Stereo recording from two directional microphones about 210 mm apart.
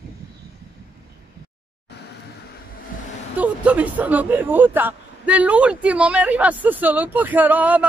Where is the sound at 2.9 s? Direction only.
40° left (ahead or behind).